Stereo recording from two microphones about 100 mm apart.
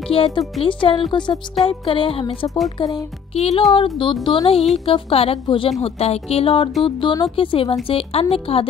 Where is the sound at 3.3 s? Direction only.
90° left.